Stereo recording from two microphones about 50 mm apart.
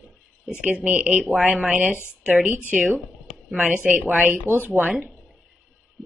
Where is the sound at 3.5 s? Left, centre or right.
Right.